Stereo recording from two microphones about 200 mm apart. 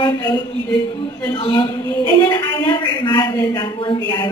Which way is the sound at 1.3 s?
25° left (ahead or behind).